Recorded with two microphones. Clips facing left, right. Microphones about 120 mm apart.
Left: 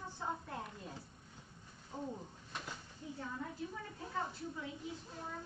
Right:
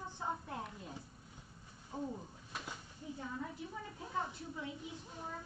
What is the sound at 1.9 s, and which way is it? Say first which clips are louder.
Speech: right 2 dB; 10° right (ahead or behind).